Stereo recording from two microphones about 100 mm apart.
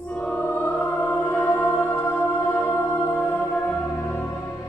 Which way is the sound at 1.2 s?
15° left (ahead or behind).